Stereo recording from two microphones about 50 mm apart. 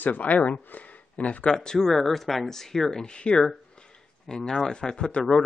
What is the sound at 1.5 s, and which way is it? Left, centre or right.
Speech, centre.